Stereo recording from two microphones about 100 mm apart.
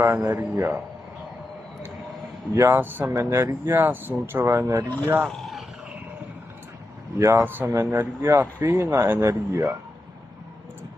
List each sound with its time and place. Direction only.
0.0 s speech: 20° right (ahead or behind)
2.5 s a man's voice: 30° right (ahead or behind)
2.8 s speech: 20° right (ahead or behind)
5.3 s a sound: centre (ahead or behind)
7.2 s a man's voice: 30° right (ahead or behind)
7.4 s speech: 20° right (ahead or behind)